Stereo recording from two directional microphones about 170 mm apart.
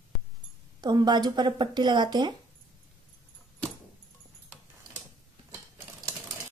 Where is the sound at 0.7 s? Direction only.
25° right (ahead or behind).